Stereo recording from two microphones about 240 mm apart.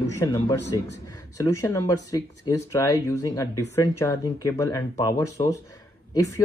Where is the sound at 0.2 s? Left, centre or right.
Centre.